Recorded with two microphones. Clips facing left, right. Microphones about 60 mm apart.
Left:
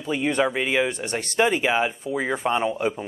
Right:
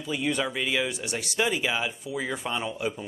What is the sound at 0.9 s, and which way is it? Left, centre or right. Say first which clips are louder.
Speech: left 4 dB; left.